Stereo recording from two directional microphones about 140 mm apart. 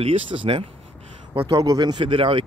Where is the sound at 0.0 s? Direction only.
40° right (ahead or behind).